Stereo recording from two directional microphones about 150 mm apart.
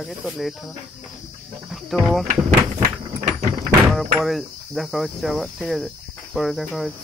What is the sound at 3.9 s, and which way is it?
Cricket, centre (ahead or behind).